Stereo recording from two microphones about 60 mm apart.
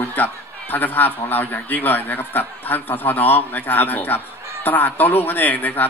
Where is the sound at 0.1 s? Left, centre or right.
Left.